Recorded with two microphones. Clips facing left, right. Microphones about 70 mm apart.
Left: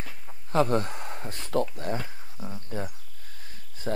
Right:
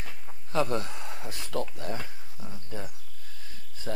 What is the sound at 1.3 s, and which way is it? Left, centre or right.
Speech, left.